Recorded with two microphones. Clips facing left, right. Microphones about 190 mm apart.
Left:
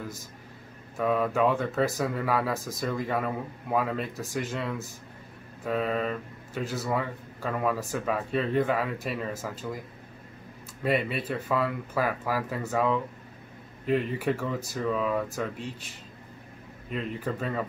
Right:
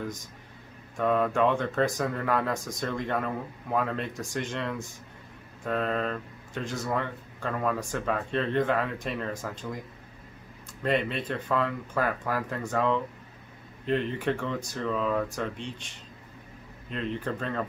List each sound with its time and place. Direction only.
0.9 s speech: 5° left (ahead or behind)
10.8 s speech: 10° left (ahead or behind)
16.9 s speech: 5° left (ahead or behind)